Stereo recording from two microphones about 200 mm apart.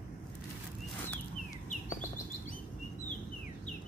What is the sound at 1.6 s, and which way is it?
Chirp, 40° left (ahead or behind).